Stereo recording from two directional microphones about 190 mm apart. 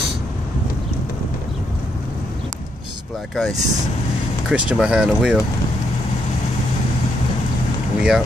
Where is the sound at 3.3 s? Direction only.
Centre (ahead or behind).